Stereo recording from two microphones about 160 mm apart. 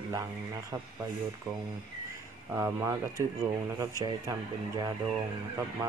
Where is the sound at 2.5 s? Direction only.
20° right (ahead or behind).